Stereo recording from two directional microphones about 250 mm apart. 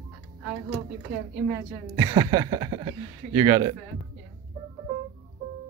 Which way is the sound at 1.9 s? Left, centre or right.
Centre.